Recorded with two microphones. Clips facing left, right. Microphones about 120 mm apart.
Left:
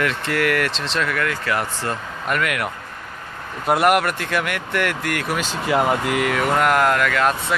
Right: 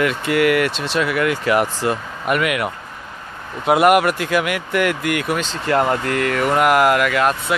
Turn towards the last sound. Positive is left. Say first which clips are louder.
# right 2 dB
turn(degrees=-5)  # may be behind; listen again after turning